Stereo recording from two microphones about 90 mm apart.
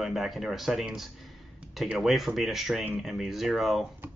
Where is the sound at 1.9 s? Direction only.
5° right (ahead or behind).